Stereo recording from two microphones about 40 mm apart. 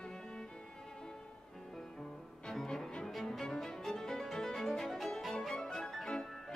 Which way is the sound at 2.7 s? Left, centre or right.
Left.